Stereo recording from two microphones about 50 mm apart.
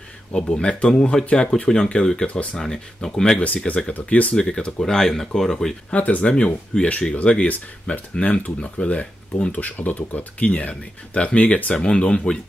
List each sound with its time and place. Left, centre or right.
0.3 s speech: centre
3.3 s speech: left
5.9 s speech: left